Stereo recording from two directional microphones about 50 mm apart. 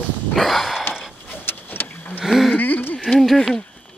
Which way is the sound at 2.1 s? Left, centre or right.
Centre.